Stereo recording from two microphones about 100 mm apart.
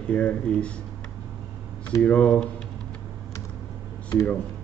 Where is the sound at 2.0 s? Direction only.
15° left (ahead or behind).